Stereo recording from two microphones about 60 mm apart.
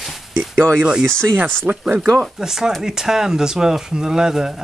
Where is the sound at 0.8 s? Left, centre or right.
Centre.